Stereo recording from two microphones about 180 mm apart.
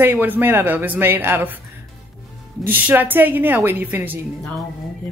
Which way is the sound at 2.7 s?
10° right (ahead or behind).